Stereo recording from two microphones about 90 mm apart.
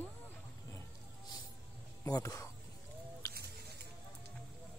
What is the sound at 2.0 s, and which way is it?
Speech, 40° left (ahead or behind).